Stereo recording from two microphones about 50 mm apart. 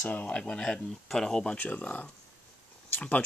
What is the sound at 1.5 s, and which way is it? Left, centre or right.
Speech, left.